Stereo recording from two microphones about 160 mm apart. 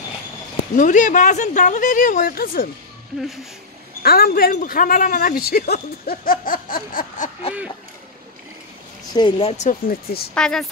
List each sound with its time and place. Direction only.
0.7 s speech: 50° left (ahead or behind)
4.0 s speech: 70° left (ahead or behind)
9.1 s speech: 25° left (ahead or behind)
9.5 s speech: 50° left (ahead or behind)
10.3 s speech: 5° left (ahead or behind)